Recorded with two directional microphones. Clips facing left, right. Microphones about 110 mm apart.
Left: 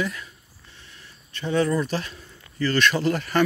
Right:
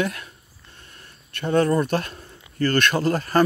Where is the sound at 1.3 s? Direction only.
55° right (ahead or behind).